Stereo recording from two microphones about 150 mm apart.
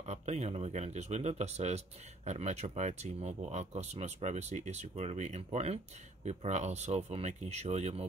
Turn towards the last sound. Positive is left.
turn(degrees=-45)  # may be behind; listen again after turning